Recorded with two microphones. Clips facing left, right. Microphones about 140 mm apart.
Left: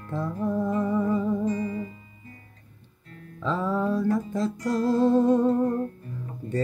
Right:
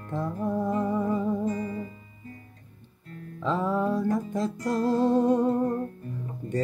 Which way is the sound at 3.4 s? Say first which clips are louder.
Even; 15° right (ahead or behind).